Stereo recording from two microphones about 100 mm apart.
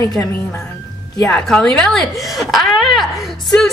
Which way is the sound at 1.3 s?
5° left (ahead or behind).